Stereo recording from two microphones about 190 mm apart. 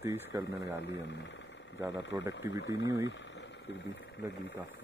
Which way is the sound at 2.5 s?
70° left (ahead or behind).